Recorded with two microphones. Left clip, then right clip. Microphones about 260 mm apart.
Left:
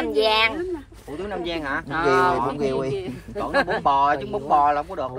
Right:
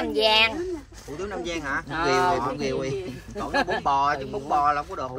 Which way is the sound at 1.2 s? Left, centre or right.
Left.